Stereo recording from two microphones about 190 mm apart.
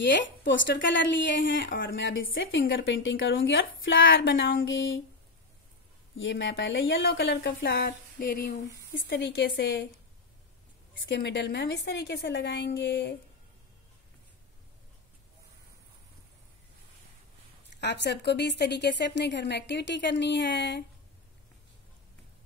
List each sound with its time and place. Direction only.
0.1 s a woman's voice: 75° left (ahead or behind)
6.1 s a woman's voice: 70° left (ahead or behind)
11.1 s a woman's voice: 65° left (ahead or behind)
17.7 s a woman's voice: 65° left (ahead or behind)